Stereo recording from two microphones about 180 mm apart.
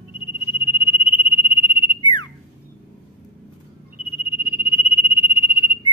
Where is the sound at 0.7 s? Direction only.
30° left (ahead or behind).